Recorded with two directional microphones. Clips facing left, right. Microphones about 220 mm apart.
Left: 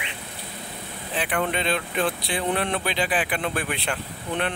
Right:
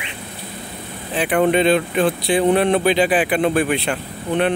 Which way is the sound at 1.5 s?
10° right (ahead or behind).